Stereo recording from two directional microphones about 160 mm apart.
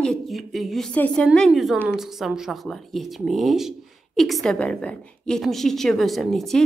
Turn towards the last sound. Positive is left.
turn(degrees=0)  # may be behind; listen again after turning